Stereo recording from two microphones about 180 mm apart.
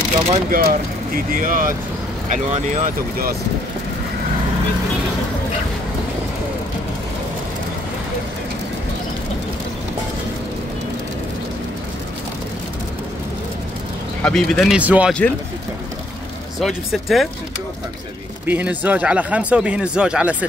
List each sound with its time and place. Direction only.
0.3 s speech: 50° right (ahead or behind)
14.2 s speech: 5° left (ahead or behind)
14.8 s speech: 5° right (ahead or behind)
16.5 s speech: centre (ahead or behind)
18.4 s speech: 10° right (ahead or behind)